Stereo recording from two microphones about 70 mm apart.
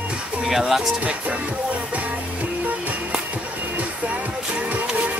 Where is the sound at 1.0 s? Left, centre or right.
Centre.